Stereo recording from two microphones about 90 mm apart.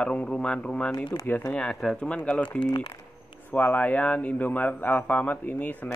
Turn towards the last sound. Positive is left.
turn(degrees=15)  # may be behind; listen again after turning